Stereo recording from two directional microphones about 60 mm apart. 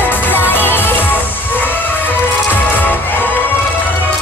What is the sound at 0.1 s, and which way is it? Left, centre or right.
Music, left.